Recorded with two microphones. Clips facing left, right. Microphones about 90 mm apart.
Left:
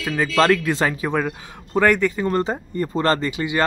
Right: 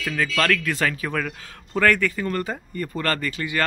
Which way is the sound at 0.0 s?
25° left (ahead or behind).